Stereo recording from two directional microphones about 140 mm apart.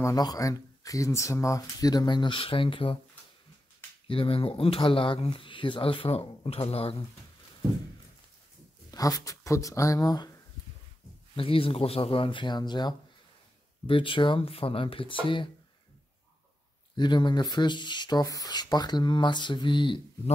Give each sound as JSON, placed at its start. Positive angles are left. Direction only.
{"t": 0.0, "sound": "speech", "side_deg": 25}
{"t": 4.1, "sound": "speech", "side_deg": 40}
{"t": 8.9, "sound": "speech", "side_deg": 25}
{"t": 11.3, "sound": "speech", "side_deg": 40}
{"t": 16.9, "sound": "speech", "side_deg": 30}